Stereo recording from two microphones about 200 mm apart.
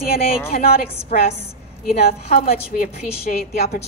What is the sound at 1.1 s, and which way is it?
Speech, 45° left (ahead or behind).